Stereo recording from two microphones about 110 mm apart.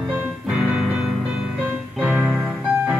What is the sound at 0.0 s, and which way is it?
Music, 10° right (ahead or behind).